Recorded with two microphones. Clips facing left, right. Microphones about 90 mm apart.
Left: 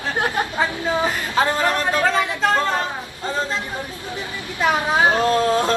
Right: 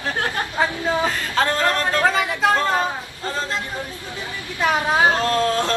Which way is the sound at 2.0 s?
5° right (ahead or behind).